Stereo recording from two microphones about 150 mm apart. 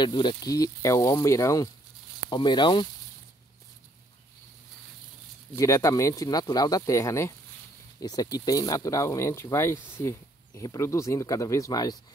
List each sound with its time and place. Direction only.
0.0 s speech: 30° left (ahead or behind)
5.5 s speech: 20° left (ahead or behind)